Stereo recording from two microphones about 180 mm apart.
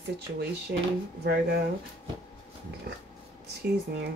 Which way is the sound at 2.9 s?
65° right (ahead or behind).